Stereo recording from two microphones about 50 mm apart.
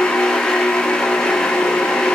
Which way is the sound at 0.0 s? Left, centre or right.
Centre.